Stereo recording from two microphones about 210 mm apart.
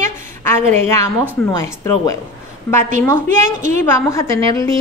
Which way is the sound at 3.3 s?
35° right (ahead or behind).